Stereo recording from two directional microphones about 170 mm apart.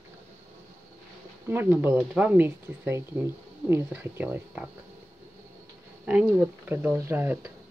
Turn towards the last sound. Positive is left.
turn(degrees=-15)  # may be behind; listen again after turning